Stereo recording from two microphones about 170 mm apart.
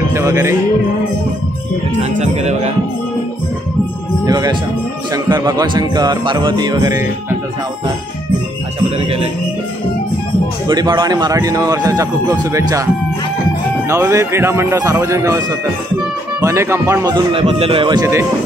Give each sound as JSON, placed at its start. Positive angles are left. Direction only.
{"t": 0.1, "sound": "speech", "side_deg": -15}
{"t": 2.0, "sound": "speech", "side_deg": -40}
{"t": 4.3, "sound": "speech", "side_deg": -25}
{"t": 10.7, "sound": "speech", "side_deg": -25}
{"t": 13.8, "sound": "speech", "side_deg": -15}